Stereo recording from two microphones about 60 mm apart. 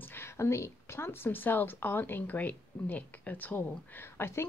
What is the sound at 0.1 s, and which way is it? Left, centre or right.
Speech, left.